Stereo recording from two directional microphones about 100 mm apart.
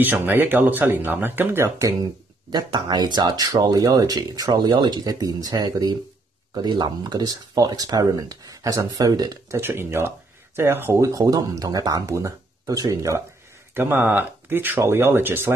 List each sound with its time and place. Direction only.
0.0 s speech: 20° right (ahead or behind)
2.5 s speech: 45° right (ahead or behind)
9.6 s speech: 20° right (ahead or behind)
13.7 s speech: 25° right (ahead or behind)